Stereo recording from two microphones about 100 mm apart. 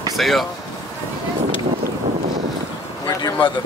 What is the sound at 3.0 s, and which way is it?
Speech, 50° left (ahead or behind).